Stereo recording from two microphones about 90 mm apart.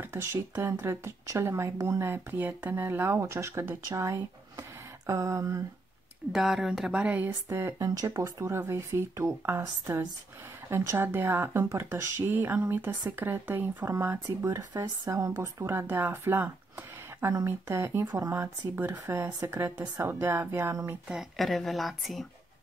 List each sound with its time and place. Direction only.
0.0 s speech: 25° right (ahead or behind)
6.3 s a woman's voice: 5° right (ahead or behind)
7.4 s speech: 30° right (ahead or behind)
7.8 s speech: 40° right (ahead or behind)
21.1 s a woman's voice: centre (ahead or behind)